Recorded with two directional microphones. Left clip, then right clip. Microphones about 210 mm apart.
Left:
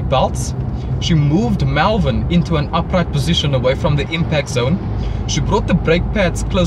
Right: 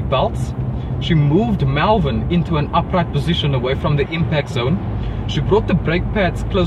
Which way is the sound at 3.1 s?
55° left (ahead or behind).